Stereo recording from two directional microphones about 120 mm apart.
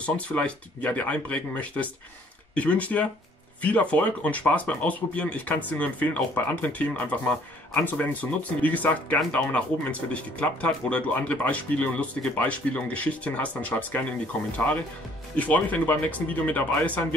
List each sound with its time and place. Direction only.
0.0 s speech: 10° left (ahead or behind)